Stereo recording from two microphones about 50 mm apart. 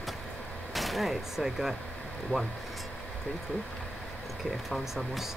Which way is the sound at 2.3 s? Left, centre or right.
Left.